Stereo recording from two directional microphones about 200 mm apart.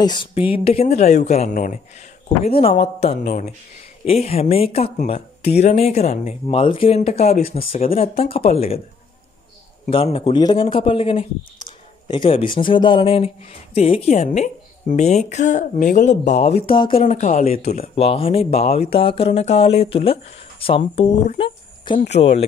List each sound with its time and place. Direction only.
0.0 s speech: 25° left (ahead or behind)
9.8 s speech: 30° left (ahead or behind)
17.0 s speech: 40° left (ahead or behind)